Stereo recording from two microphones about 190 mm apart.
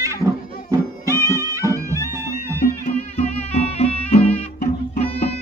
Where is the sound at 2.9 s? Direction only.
35° left (ahead or behind).